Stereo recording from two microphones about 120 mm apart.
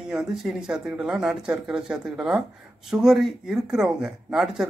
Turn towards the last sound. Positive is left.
turn(degrees=-5)  # may be behind; listen again after turning